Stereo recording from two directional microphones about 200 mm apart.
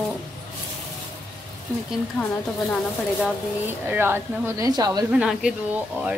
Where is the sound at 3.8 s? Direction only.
10° right (ahead or behind).